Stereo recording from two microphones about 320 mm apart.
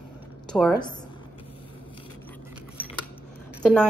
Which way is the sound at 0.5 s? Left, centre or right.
Centre.